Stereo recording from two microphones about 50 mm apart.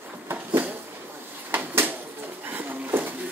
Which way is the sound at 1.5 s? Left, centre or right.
Right.